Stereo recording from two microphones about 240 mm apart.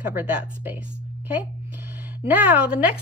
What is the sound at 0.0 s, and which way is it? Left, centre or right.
Speech, centre.